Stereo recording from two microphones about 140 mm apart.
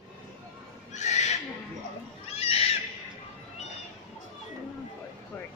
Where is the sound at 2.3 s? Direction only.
45° left (ahead or behind).